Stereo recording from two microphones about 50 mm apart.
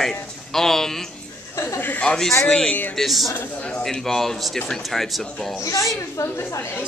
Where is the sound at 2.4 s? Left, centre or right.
Centre.